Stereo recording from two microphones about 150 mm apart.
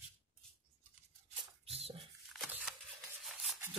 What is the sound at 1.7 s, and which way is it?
Bathtub, 40° right (ahead or behind).